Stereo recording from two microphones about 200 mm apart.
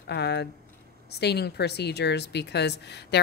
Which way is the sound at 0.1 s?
55° left (ahead or behind).